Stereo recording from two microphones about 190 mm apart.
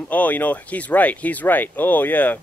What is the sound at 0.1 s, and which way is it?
Speech, 10° left (ahead or behind).